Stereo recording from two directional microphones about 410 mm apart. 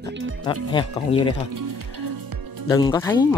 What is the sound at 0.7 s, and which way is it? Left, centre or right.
Speech, centre.